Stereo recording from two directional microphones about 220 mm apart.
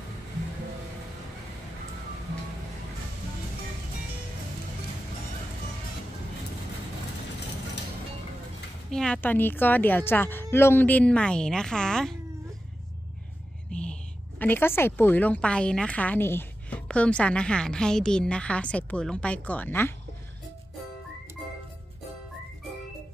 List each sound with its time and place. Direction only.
8.9 s a woman's voice: 5° left (ahead or behind)
13.7 s a sound: 5° left (ahead or behind)
14.4 s a woman's voice: 10° left (ahead or behind)